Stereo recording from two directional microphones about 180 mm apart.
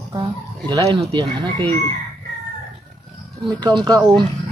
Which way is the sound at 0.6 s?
25° right (ahead or behind).